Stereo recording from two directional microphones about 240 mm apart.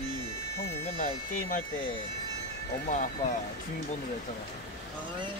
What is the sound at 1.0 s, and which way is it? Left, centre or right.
Speech, left.